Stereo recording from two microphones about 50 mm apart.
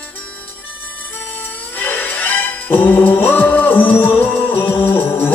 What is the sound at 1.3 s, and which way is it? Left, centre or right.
Music, left.